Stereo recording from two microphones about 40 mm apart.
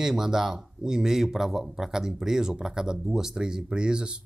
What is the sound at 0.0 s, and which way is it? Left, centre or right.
Speech, centre.